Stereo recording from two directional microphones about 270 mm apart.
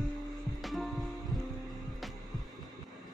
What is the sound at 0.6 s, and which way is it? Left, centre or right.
Music, centre.